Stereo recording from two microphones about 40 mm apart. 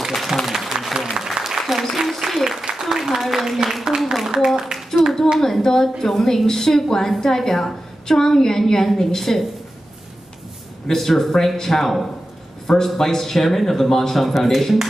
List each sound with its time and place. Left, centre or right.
0.1 s applause: centre
1.6 s applause: centre
2.7 s a sound: centre
3.2 s a man's voice: centre
4.7 s a sound: centre
5.4 s a woman's voice: centre
10.9 s a man's voice: centre